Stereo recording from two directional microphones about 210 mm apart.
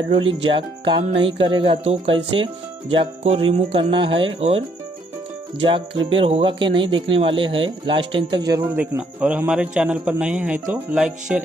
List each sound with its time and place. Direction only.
0.1 s speech: 25° right (ahead or behind); by 11.4 s 5° right (ahead or behind)